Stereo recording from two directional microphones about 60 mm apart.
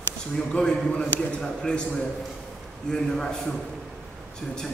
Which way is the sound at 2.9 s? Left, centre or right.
Centre.